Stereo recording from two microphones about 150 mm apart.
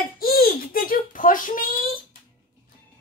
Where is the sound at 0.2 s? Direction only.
80° left; by 1.9 s 65° left (ahead or behind).